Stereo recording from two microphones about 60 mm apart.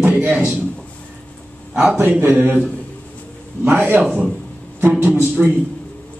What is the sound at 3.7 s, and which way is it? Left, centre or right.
A man's voice, right.